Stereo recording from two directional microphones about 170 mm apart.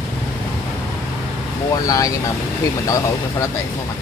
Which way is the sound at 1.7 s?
20° left (ahead or behind).